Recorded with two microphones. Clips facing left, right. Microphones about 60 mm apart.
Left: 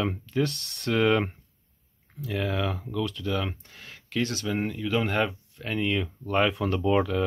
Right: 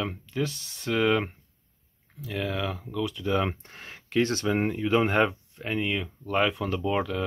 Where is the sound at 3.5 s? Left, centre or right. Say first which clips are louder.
Right 2 dB; right.